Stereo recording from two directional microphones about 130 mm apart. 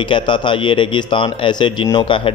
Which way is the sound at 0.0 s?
40° left (ahead or behind).